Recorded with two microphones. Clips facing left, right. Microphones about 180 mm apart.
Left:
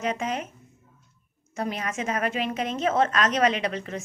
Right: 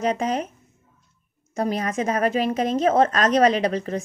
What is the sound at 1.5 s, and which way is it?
A woman's voice, 40° right (ahead or behind).